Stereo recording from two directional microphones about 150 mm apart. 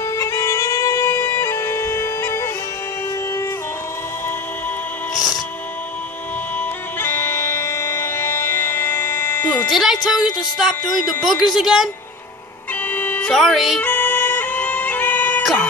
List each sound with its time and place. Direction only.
0.2 s music: 20° left (ahead or behind)
7.0 s music: 15° left (ahead or behind)
9.7 s speech: centre (ahead or behind)
12.9 s music: 10° left (ahead or behind)
13.3 s speech: centre (ahead or behind)
13.8 s bagpipes: 10° left (ahead or behind)